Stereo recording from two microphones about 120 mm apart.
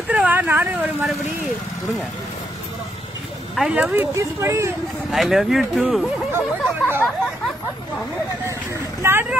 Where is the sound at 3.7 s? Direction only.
15° right (ahead or behind).